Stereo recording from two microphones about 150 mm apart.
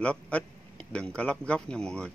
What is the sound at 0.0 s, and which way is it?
A man's voice, 5° left (ahead or behind).